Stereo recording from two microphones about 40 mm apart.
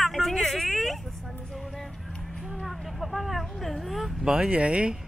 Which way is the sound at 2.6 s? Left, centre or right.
Centre.